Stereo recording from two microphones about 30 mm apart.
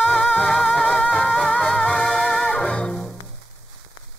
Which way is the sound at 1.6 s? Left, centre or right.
Centre.